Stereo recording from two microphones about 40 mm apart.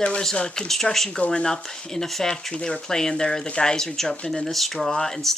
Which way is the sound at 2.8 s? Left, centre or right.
Centre.